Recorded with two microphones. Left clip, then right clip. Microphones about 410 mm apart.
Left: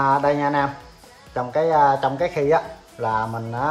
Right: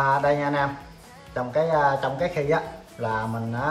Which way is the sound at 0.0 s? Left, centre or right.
Centre.